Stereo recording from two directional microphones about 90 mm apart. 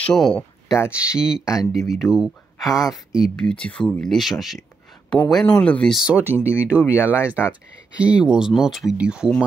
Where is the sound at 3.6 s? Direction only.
10° left (ahead or behind).